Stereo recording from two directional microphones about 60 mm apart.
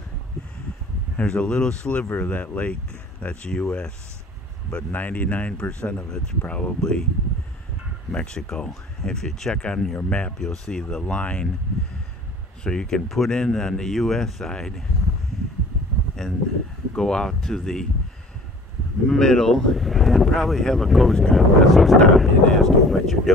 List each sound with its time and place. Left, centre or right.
1.1 s speech: centre
4.9 s speech: left; by 7.1 s centre
8.1 s speech: centre
10.7 s speech: centre
12.6 s speech: centre
13.1 s speech: centre
16.2 s speech: centre
19.0 s speech: centre